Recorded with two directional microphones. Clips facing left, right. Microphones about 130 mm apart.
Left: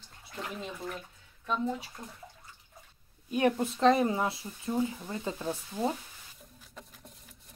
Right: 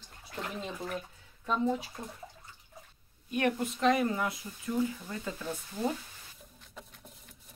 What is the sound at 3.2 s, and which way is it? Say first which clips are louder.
Speech: left 3 dB; 30° left (ahead or behind).